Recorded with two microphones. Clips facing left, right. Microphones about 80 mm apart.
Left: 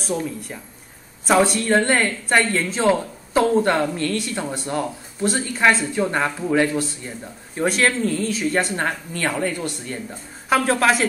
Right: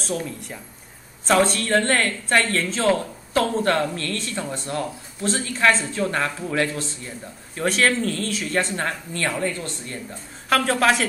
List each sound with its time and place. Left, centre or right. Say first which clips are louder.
0.0 s a woman's voice: left 3 dB; centre
7.6 s a woman's voice: left 1 dB; centre
8.7 s speech: left 2 dB; left
9.4 s a woman's voice: left 2 dB; centre
10.5 s speech: left 1 dB; centre